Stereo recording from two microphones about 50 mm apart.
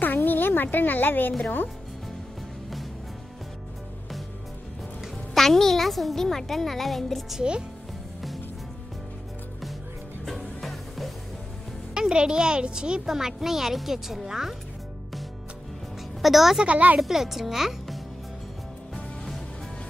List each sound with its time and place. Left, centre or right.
0.0 s a sound: left
1.4 s a woman's voice: left
5.0 s a woman's voice: centre
7.3 s speech: centre
10.2 s music: centre
11.9 s a woman's voice: centre
16.2 s a woman's voice: centre
16.6 s speech: right
17.0 s a child's voice: centre